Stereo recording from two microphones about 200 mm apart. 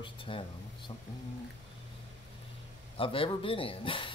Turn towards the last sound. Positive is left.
turn(degrees=25)  # may be behind; listen again after turning